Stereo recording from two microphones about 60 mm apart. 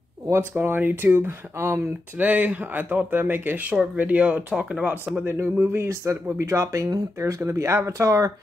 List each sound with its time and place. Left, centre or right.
0.4 s speech: right
2.1 s speech: right
5.2 s speech: right